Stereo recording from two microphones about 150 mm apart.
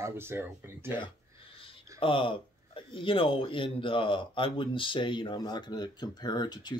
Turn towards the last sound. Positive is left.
turn(degrees=30)  # may be behind; listen again after turning